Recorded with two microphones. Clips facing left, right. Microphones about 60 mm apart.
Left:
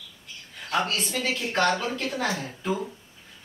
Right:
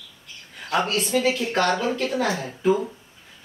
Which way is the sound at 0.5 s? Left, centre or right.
Centre.